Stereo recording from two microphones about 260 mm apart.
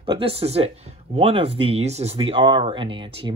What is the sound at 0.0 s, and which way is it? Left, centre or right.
Speech, right.